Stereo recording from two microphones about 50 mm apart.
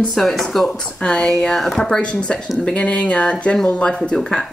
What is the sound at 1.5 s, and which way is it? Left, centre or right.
Speech, centre.